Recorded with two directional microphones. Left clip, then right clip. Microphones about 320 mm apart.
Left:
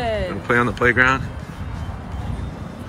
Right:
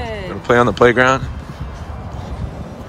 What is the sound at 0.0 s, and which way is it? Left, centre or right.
Speech, centre.